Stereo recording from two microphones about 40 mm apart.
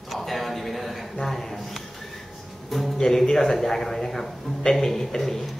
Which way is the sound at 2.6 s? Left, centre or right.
Centre.